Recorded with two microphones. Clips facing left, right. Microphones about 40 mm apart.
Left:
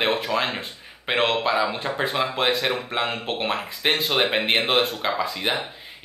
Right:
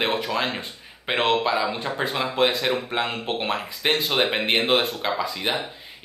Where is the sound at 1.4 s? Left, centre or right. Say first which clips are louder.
Left 1 dB; centre.